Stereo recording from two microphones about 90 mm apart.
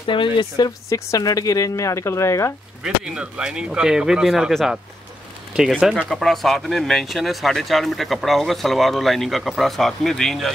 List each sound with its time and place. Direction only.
0.0 s speech: 70° left (ahead or behind)
0.7 s speech: 40° left (ahead or behind)
2.8 s speech: 10° right (ahead or behind)
5.8 s speech: 10° right (ahead or behind)
6.0 s speech: centre (ahead or behind)